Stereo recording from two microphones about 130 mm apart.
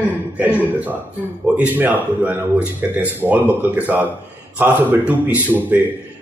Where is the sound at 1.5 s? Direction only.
10° right (ahead or behind).